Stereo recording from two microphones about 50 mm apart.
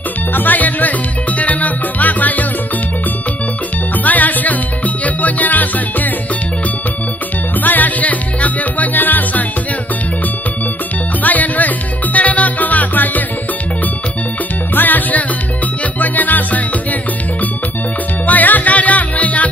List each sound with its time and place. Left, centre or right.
0.3 s music: left
3.9 s music: left
7.6 s music: left
11.2 s music: left
14.8 s music: left
18.2 s music: left